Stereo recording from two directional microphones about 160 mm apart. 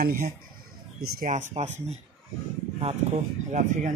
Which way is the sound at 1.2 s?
50° right (ahead or behind).